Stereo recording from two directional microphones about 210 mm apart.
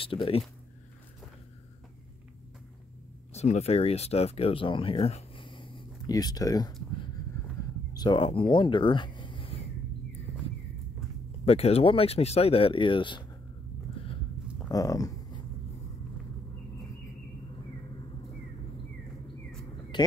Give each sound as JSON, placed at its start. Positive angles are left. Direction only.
{"t": 0.0, "sound": "speech", "side_deg": 25}
{"t": 3.3, "sound": "speech", "side_deg": 30}
{"t": 7.9, "sound": "speech", "side_deg": 20}
{"t": 11.4, "sound": "speech", "side_deg": 30}
{"t": 14.0, "sound": "a sound", "side_deg": 25}
{"t": 14.7, "sound": "a sound", "side_deg": 15}
{"t": 19.9, "sound": "speech", "side_deg": 20}